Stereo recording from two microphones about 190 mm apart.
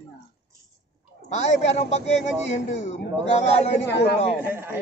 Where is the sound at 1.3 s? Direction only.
35° left (ahead or behind).